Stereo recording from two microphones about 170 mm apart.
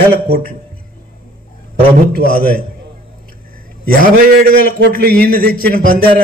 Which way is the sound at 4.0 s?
60° right (ahead or behind).